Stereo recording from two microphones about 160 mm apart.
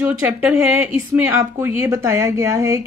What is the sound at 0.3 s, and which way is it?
A woman's voice, 5° right (ahead or behind).